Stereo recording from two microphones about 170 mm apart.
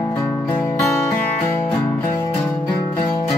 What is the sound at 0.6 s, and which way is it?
Music, 15° left (ahead or behind).